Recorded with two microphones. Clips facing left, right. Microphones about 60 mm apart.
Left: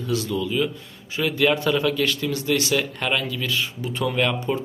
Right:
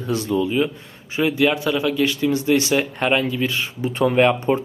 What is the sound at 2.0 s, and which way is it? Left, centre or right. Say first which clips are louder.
Speech: right 5 dB; centre.